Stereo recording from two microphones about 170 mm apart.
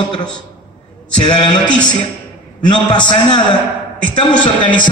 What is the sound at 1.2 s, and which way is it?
A man's voice, 30° left (ahead or behind).